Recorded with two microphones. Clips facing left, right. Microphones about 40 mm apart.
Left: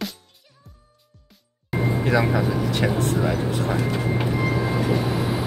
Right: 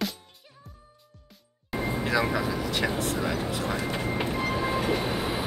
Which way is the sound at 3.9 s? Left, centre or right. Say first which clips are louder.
Left 4 dB; centre.